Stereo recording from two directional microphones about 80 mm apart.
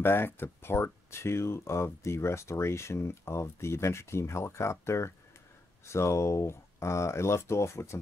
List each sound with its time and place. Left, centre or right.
0.0 s speech: left